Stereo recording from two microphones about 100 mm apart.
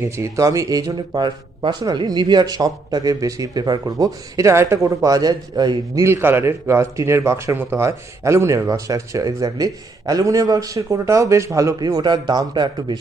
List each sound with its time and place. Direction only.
0.0 s speech: 30° right (ahead or behind)
3.8 s speech: 30° right (ahead or behind)
6.0 s speech: 25° right (ahead or behind); by 12.9 s 50° right (ahead or behind)